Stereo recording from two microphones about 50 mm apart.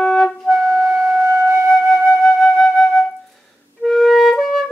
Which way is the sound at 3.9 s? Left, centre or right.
Centre.